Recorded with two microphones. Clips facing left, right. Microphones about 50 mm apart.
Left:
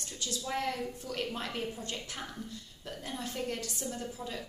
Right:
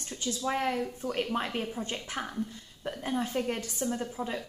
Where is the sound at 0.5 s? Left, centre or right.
Right.